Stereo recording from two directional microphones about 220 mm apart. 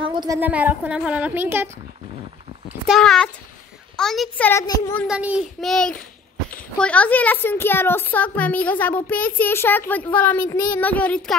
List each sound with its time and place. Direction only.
0.0 s a sound: 20° right (ahead or behind)
0.4 s a woman's voice: 5° right (ahead or behind)
2.9 s a child's voice: centre (ahead or behind)
5.0 s a child's voice: 5° right (ahead or behind)